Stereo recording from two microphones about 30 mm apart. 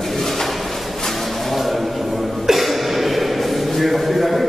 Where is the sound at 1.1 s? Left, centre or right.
Centre.